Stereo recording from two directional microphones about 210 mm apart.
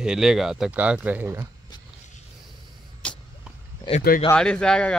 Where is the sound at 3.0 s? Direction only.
5° left (ahead or behind).